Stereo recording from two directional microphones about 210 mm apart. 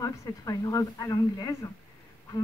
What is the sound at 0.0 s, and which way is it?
Speech, 15° left (ahead or behind).